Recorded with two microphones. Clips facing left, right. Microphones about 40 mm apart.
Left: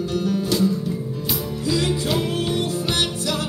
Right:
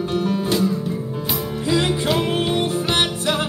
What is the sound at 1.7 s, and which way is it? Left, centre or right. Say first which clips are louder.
Music: right 3 dB; right.